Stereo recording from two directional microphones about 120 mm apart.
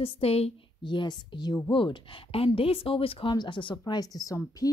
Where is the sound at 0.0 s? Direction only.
55° left (ahead or behind).